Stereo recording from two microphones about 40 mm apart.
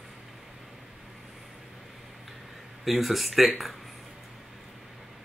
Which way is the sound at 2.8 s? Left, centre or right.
Centre.